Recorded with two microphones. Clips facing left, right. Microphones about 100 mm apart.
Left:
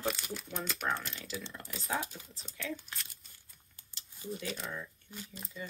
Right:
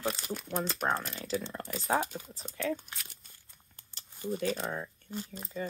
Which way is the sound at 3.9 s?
45° right (ahead or behind).